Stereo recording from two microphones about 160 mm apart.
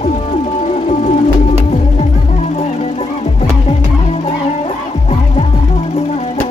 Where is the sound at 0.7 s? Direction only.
45° left (ahead or behind).